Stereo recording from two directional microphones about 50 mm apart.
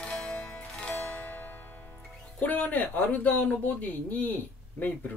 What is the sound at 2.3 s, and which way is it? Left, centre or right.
Speech, left.